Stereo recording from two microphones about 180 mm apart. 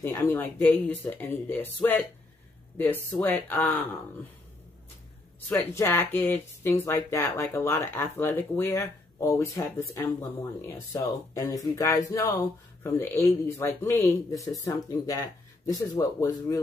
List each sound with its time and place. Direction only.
0.0 s speech: 15° left (ahead or behind)
5.5 s speech: 15° left (ahead or behind)